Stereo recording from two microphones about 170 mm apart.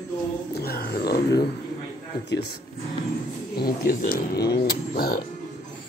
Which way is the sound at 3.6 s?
60° left (ahead or behind).